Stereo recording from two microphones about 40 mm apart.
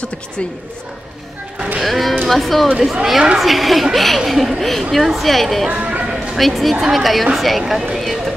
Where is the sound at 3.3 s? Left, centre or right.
Centre.